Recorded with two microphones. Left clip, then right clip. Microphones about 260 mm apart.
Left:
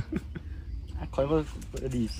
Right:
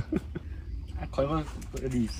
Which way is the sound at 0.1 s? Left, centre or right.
Centre.